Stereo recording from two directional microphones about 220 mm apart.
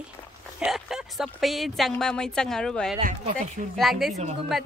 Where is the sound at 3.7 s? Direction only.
Centre (ahead or behind).